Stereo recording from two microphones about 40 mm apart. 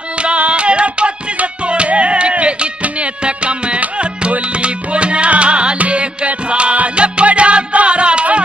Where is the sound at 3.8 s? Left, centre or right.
Right.